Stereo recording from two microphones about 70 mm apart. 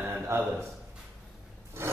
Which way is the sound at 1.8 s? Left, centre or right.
Right.